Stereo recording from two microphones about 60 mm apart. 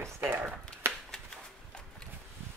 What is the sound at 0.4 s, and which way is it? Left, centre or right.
Shuffling cards, right.